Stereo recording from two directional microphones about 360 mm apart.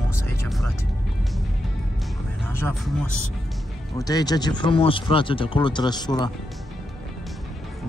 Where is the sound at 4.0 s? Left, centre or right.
Centre.